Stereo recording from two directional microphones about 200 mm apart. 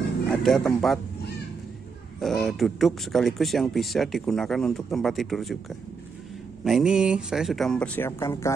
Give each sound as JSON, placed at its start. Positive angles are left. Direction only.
{"t": 0.3, "sound": "speech", "side_deg": 0}
{"t": 2.1, "sound": "speech", "side_deg": 0}
{"t": 6.6, "sound": "speech", "side_deg": 0}